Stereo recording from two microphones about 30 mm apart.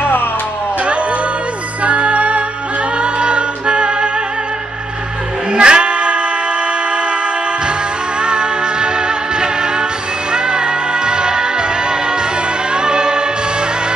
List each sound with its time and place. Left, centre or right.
0.8 s music: right
5.5 s a sound: right
8.2 s music: right